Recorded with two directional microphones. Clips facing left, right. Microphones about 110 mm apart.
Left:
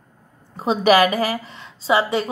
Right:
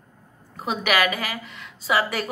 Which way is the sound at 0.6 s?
30° left (ahead or behind).